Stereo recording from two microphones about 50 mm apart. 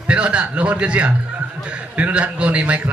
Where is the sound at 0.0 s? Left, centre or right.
Right.